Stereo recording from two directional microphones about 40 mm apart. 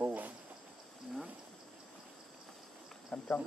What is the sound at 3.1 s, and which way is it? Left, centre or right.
Speech, left.